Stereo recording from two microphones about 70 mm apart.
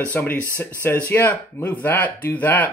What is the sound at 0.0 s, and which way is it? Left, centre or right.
Speech, left.